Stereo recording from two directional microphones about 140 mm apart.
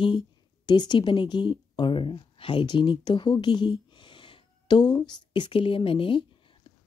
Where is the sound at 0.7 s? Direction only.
30° left (ahead or behind).